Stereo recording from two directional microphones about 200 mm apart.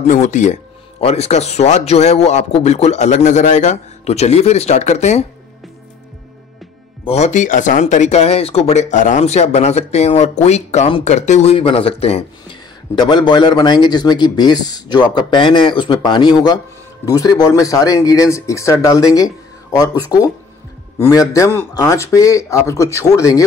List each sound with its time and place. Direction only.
0.0 s speech: 35° left (ahead or behind)
7.1 s speech: 35° left (ahead or behind); by 23.4 s 15° left (ahead or behind)